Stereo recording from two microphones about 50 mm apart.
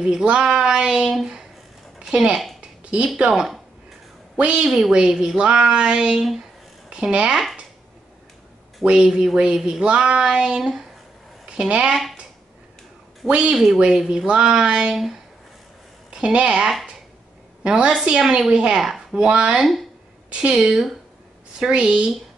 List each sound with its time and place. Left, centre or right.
0.0 s speech: centre
2.3 s a woman's voice: centre
2.8 s a sound: right
3.2 s a woman's voice: centre
4.6 s speech: centre
8.8 s speech: centre
9.8 s speech: right
13.3 s a woman's voice: right
16.1 s a woman's voice: right
18.8 s a sound: centre
19.1 s a woman's voice: right
21.5 s a woman's voice: centre